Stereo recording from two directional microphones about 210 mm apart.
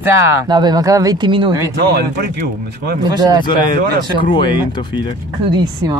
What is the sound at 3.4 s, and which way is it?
Speech, 20° left (ahead or behind).